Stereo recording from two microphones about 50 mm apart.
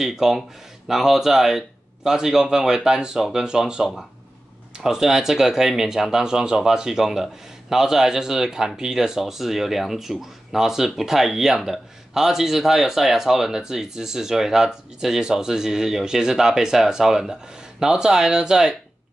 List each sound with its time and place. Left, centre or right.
0.0 s speech: centre